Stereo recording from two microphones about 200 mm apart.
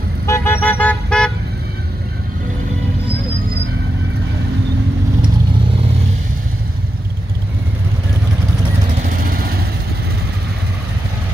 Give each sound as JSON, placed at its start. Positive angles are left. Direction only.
{"t": 0.3, "sound": "toot", "side_deg": 10}
{"t": 9.2, "sound": "vehicle", "side_deg": -50}